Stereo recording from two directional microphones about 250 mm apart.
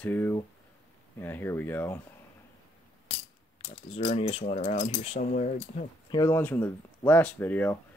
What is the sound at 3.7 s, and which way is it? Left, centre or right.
Speech, left.